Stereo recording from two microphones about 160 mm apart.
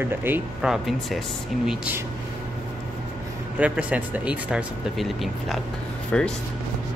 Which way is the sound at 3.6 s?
10° right (ahead or behind).